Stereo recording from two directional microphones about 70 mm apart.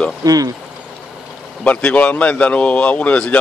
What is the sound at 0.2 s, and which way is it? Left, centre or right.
Speech, right.